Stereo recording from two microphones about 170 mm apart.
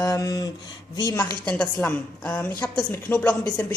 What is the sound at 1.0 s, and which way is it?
Speech, 15° left (ahead or behind).